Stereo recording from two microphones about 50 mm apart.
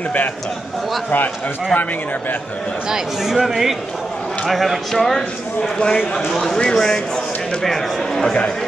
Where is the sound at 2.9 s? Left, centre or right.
Centre.